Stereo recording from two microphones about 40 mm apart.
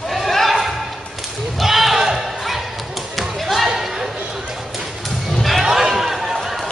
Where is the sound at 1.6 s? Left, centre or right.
Centre.